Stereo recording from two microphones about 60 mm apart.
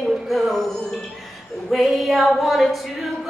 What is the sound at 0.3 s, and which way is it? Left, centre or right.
Music, centre.